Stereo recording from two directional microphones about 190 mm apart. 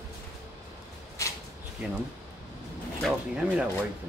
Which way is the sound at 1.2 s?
15° left (ahead or behind).